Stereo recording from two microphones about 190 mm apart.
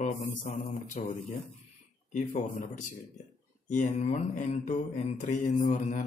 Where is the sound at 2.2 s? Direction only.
40° left (ahead or behind).